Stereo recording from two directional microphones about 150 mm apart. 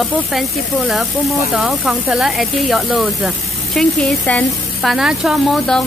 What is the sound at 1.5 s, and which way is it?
Speech, 5° right (ahead or behind).